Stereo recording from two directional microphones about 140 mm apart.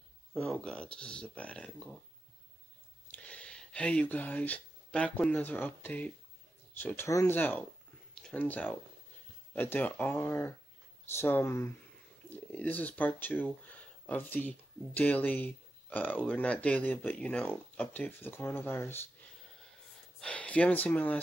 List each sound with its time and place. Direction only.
0.3 s speech: 5° left (ahead or behind)
3.1 s speech: 10° left (ahead or behind)
8.1 s speech: 5° left (ahead or behind)
12.2 s a sound: 15° left (ahead or behind)
12.5 s speech: 10° left (ahead or behind)
20.2 s speech: 10° left (ahead or behind)